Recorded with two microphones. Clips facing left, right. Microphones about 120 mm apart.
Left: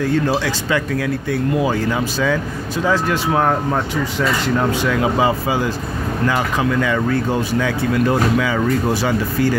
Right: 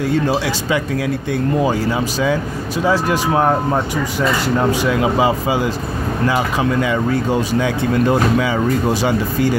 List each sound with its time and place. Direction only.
1.7 s speech: 15° right (ahead or behind)